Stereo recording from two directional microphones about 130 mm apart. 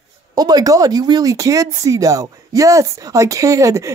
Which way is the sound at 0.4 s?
30° right (ahead or behind).